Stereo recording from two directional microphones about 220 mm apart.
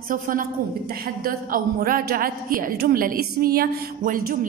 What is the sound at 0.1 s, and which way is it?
A woman's voice, 40° right (ahead or behind).